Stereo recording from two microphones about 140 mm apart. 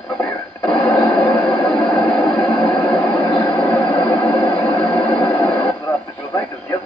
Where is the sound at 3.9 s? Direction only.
10° left (ahead or behind).